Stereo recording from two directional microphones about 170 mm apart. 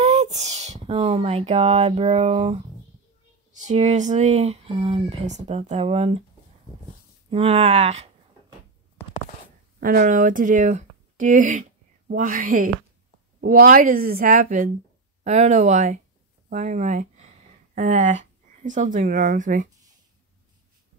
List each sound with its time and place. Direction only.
0.0 s speech: 40° right (ahead or behind)
3.6 s speech: 40° right (ahead or behind)
5.2 s speech: 45° right (ahead or behind)
7.2 s speech: 35° right (ahead or behind)
9.8 s a woman's voice: 55° right (ahead or behind)